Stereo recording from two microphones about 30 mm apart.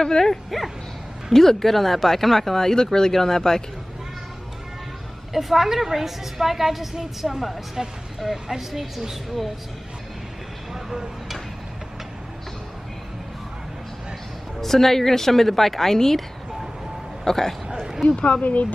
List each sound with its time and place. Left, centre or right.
0.5 s speech: centre
1.3 s speech: centre
5.3 s a woman's voice: centre
10.7 s vehicle: centre
14.6 s speech: centre
17.2 s speech: centre
18.0 s speech: left
18.4 s speech: left